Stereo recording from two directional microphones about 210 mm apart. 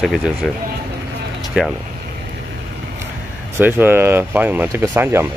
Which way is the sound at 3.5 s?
10° right (ahead or behind).